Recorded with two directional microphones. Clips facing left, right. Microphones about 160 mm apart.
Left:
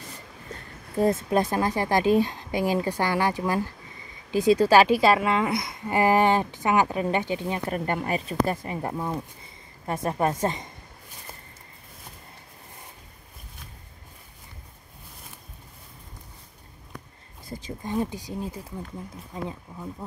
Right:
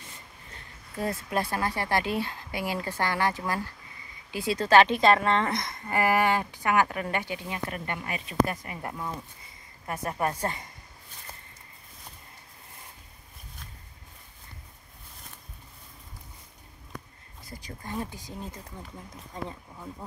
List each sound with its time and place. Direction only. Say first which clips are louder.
0.9 s a woman's voice: left 7 dB; 25° left (ahead or behind); by 5.8 s 10° left (ahead or behind)
5.9 s speech: left 4 dB; 20° left (ahead or behind)
17.5 s a woman's voice: left 7 dB; 25° left (ahead or behind); by 20.1 s 5° left (ahead or behind)